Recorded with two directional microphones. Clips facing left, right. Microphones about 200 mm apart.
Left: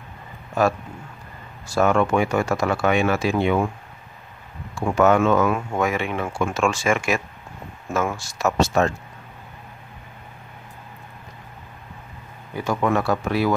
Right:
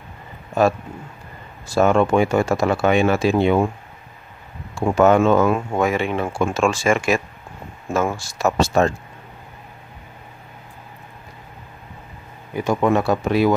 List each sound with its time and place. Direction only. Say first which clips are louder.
1.8 s speech: right 3 dB; 25° right (ahead or behind)
4.7 s speech: right 3 dB; 30° right (ahead or behind)
12.5 s speech: right 4 dB; 20° right (ahead or behind)